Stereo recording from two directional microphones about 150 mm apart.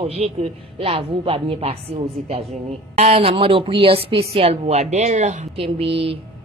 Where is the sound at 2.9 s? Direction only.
40° right (ahead or behind).